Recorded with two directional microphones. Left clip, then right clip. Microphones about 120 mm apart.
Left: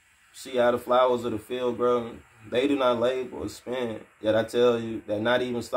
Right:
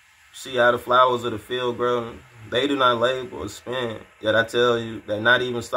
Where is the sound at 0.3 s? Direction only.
25° left (ahead or behind).